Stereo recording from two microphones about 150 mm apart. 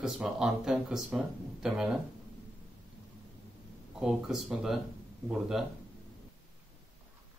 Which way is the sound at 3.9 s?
5° right (ahead or behind).